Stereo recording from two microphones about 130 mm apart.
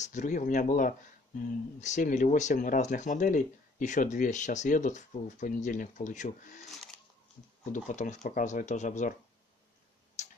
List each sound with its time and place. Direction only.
0.0 s speech: 70° left (ahead or behind)
1.8 s speech: 70° left (ahead or behind)
7.7 s speech: 70° left (ahead or behind)
10.2 s tick-tock: 65° left (ahead or behind)